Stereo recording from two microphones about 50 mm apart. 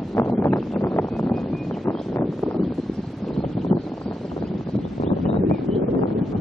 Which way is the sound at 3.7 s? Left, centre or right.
Left.